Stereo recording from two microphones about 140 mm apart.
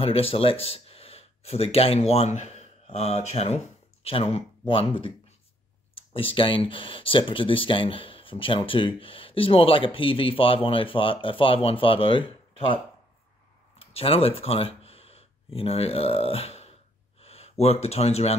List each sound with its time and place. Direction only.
0.0 s speech: 45° left (ahead or behind)